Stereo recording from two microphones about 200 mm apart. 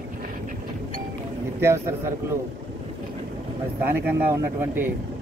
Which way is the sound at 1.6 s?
15° right (ahead or behind).